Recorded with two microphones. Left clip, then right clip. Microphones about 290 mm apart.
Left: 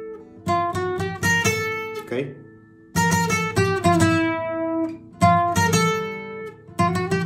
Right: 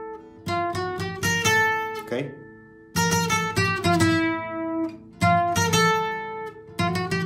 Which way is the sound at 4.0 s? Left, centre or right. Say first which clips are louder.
Left 2 dB; centre.